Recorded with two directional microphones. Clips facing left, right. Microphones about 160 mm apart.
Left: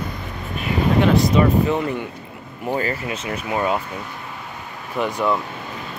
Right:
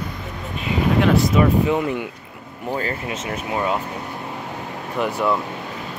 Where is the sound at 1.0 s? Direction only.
Centre (ahead or behind).